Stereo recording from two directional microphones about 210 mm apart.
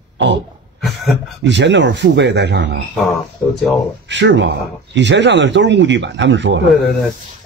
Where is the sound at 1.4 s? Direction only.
60° right (ahead or behind).